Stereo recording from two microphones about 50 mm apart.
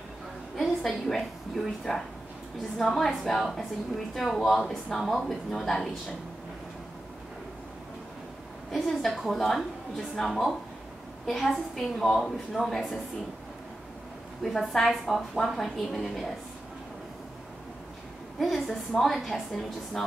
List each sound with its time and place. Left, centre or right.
0.6 s a sound: centre
1.0 s a woman's voice: centre
8.7 s a sound: centre
9.3 s a woman's voice: centre
14.4 s a woman's voice: centre
18.4 s a woman's voice: centre